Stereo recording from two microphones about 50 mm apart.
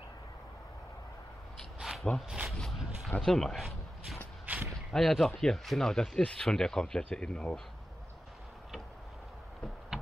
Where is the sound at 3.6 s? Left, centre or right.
Centre.